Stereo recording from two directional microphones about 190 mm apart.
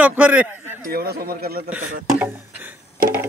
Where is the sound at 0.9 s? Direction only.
55° right (ahead or behind).